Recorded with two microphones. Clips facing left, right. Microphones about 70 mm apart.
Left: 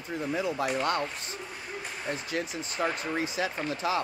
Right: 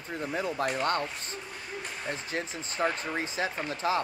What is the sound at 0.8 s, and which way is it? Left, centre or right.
Speech, right.